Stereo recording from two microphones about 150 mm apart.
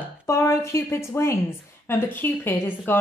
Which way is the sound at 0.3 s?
20° left (ahead or behind).